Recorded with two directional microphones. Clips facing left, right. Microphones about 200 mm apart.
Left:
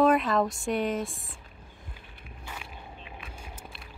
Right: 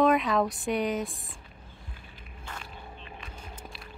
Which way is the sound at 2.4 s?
10° left (ahead or behind).